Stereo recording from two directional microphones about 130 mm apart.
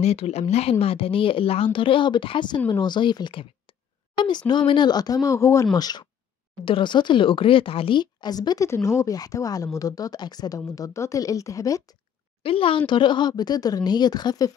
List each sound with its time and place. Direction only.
0.0 s a woman's voice: 55° left (ahead or behind); by 11.8 s 25° left (ahead or behind)
12.4 s speech: 45° left (ahead or behind)